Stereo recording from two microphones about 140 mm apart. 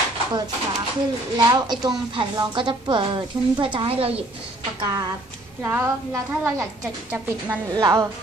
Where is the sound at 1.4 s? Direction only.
30° right (ahead or behind); by 4.2 s 45° right (ahead or behind).